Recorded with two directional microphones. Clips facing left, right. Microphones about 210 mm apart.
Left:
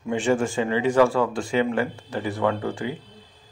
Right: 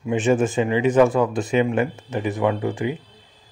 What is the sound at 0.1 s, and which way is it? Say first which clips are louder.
Speech: right 3 dB; 20° right (ahead or behind).